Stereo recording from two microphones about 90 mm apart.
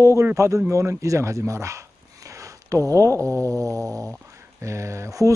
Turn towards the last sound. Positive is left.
turn(degrees=-35)  # may be behind; listen again after turning